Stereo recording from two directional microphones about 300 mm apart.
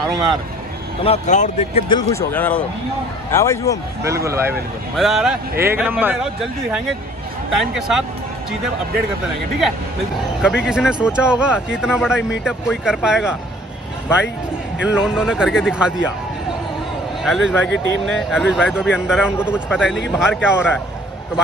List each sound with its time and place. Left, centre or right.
1.0 s a man's voice: left
4.0 s speech: centre
10.4 s speech: centre
14.8 s speech: centre
17.2 s speech: centre